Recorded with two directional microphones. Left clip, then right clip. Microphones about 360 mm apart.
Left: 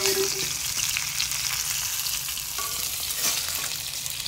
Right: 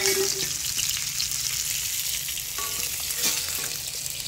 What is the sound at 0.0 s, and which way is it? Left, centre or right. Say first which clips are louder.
Frying: even; centre.